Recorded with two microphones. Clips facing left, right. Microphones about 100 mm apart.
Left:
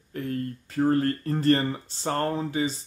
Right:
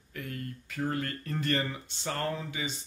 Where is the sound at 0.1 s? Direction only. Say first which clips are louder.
Left 9 dB; 35° left (ahead or behind).